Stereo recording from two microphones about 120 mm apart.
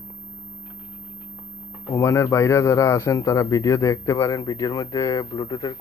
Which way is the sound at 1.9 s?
25° left (ahead or behind).